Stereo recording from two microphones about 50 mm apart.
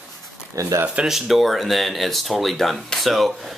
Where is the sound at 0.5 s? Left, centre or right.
Right.